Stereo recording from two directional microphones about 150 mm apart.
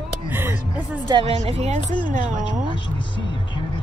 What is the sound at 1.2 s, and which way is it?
Speech, 40° right (ahead or behind).